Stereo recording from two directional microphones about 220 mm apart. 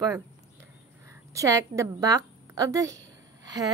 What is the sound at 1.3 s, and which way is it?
A woman's voice, 15° right (ahead or behind).